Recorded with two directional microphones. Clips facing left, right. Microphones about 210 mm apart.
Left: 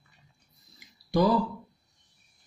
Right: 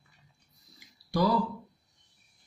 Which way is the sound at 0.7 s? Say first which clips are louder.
Left 4 dB; 20° left (ahead or behind).